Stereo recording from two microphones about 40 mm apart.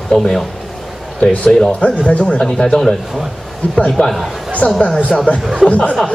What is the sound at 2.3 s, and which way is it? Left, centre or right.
Speech, centre.